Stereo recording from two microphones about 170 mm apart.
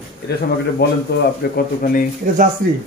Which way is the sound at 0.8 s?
70° left (ahead or behind).